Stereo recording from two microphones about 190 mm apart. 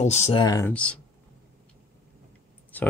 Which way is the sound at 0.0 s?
35° left (ahead or behind).